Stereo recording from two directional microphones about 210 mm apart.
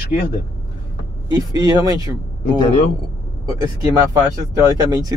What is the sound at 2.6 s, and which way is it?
Speech, 35° left (ahead or behind).